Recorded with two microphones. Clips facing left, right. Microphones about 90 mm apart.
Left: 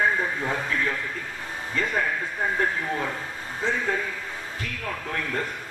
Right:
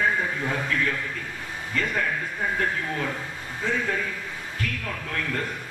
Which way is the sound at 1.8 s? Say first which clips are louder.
Even; 30° left (ahead or behind).